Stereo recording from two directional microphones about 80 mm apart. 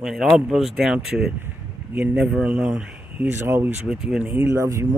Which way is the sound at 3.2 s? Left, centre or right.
Right.